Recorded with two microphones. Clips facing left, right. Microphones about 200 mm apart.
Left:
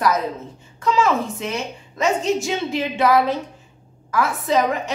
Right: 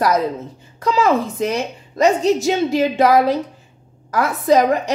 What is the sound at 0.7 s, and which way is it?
A woman's voice, 35° right (ahead or behind).